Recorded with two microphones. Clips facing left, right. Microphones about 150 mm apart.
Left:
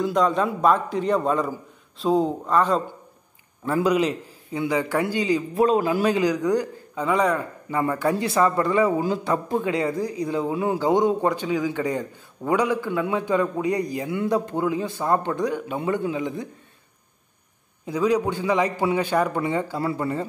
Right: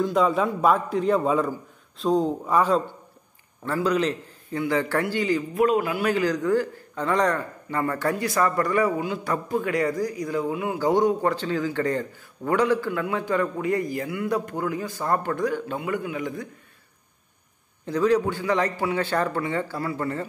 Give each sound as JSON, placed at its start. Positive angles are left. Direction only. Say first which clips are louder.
{"t": 0.0, "sound": "a man's voice", "louder": "even", "side_deg": -5}
{"t": 2.4, "sound": "a man's voice", "louder": "even", "side_deg": -10}
{"t": 3.7, "sound": "a man's voice", "louder": "left 2 dB", "side_deg": 10}
{"t": 5.5, "sound": "a man's voice", "louder": "left 3 dB", "side_deg": 30}
{"t": 6.0, "sound": "a man's voice", "louder": "left 2 dB", "side_deg": 15}
{"t": 10.8, "sound": "a man's voice", "louder": "even", "side_deg": 20}
{"t": 17.8, "sound": "a man's voice", "louder": "even", "side_deg": 10}